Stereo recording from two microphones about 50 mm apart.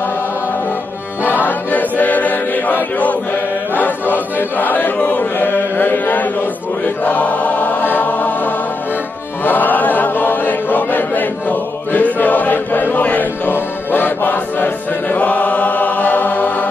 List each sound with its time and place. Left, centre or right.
1.2 s choir: left
4.1 s chant: left
7.1 s choir: left
13.5 s music: left